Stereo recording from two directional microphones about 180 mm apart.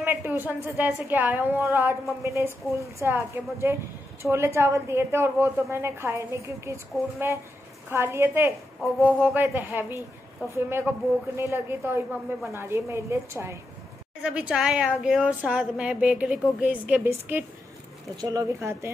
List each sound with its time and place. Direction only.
0.0 s a woman's voice: 15° right (ahead or behind)
7.9 s a woman's voice: 15° right (ahead or behind)